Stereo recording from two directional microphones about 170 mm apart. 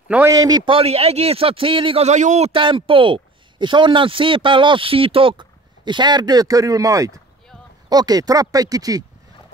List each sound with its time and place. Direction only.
0.1 s a man's voice: 15° right (ahead or behind)